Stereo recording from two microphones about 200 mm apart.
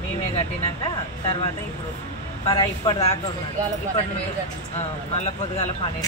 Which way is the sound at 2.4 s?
25° left (ahead or behind).